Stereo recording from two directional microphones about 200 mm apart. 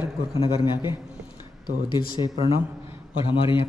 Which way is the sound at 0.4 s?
25° left (ahead or behind).